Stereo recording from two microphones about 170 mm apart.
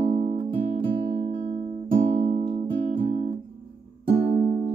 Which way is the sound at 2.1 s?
35° right (ahead or behind).